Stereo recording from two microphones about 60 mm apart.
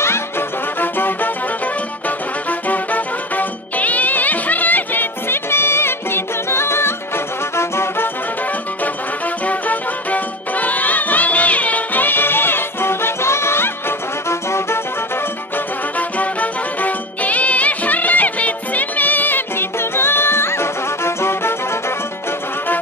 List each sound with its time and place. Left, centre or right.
0.7 s music: left
2.7 s music: left
9.5 s music: left
16.0 s music: left